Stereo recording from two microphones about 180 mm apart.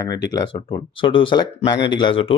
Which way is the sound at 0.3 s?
20° left (ahead or behind).